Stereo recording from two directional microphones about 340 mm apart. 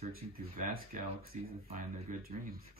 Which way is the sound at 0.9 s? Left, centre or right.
Right.